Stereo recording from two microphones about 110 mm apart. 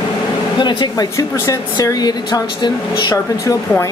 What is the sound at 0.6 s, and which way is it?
A woman's voice, 45° left (ahead or behind).